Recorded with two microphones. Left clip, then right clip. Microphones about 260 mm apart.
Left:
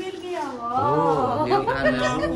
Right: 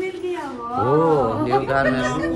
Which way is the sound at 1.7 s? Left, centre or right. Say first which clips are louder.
Right 2 dB; centre.